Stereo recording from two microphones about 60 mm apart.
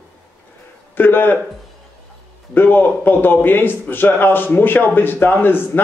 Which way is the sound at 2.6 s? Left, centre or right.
Left.